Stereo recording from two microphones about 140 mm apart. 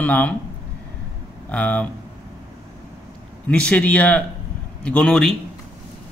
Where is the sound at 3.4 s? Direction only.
10° left (ahead or behind).